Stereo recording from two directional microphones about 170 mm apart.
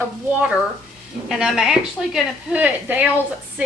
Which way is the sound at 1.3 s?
Centre (ahead or behind).